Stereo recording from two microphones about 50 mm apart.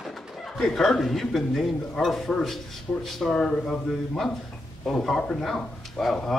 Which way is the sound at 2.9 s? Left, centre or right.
Left.